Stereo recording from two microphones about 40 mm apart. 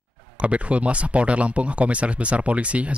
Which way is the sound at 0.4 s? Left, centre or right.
Right.